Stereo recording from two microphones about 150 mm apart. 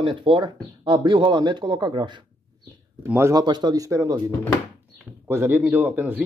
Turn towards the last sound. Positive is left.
turn(degrees=-15)  # may be behind; listen again after turning